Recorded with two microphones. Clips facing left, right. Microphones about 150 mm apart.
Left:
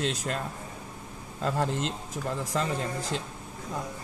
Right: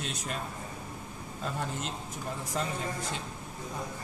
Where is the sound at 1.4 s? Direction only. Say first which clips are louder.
Left 7 dB; 90° left.